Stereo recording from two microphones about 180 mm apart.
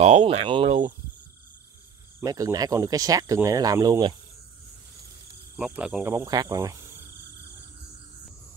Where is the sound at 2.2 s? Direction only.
20° right (ahead or behind).